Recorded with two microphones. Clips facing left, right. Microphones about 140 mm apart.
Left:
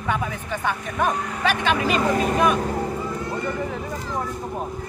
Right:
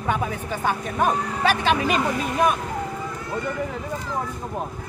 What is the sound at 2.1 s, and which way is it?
Speech, 45° left (ahead or behind).